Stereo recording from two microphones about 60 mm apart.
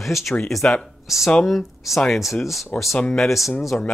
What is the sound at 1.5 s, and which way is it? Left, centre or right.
Speech, centre.